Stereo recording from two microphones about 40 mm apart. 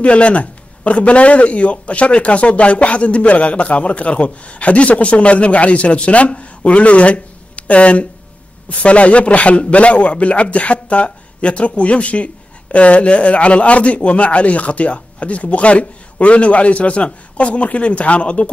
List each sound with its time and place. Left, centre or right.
0.0 s speech: left